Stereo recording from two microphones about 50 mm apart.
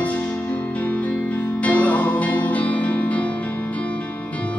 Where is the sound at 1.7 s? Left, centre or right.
Left.